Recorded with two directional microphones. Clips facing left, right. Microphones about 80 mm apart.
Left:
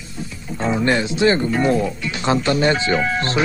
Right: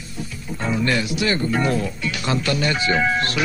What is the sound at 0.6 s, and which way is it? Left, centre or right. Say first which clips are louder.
Speech: left 3 dB; left.